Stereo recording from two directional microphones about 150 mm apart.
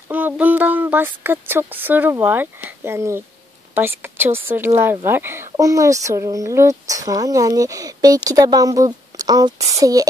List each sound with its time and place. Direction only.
0.1 s speech: 10° right (ahead or behind)